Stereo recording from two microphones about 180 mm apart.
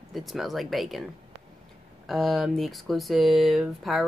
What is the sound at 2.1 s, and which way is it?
Speech, centre (ahead or behind).